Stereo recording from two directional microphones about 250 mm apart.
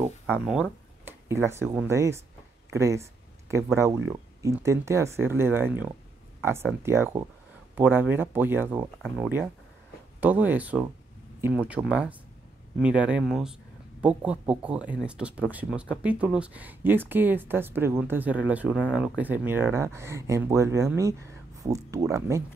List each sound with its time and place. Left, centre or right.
0.0 s speech: centre